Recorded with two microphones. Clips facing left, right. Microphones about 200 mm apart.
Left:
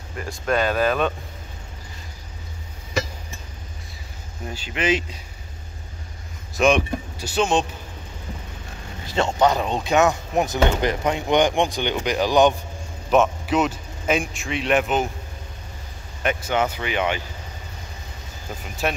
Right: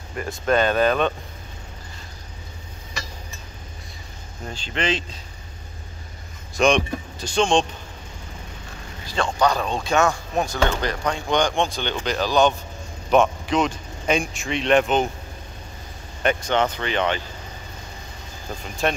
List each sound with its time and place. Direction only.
0.5 s speech: 5° left (ahead or behind)
4.5 s speech: 10° left (ahead or behind)
6.5 s speech: 5° left (ahead or behind)
9.0 s speech: 20° left (ahead or behind)
13.1 s speech: 5° left (ahead or behind)
16.2 s speech: 5° left (ahead or behind)
18.8 s speech: 5° left (ahead or behind)